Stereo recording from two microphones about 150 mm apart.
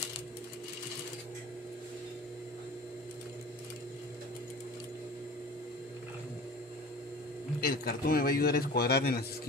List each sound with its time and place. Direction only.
7.6 s a man's voice: 90° left